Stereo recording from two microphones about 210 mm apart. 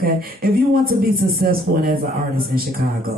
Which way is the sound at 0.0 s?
45° right (ahead or behind).